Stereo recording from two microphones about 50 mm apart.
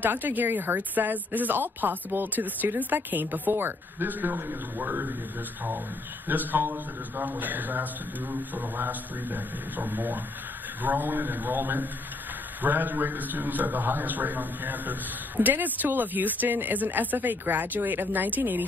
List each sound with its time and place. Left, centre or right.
0.0 s a man's voice: right
6.2 s a man's voice: right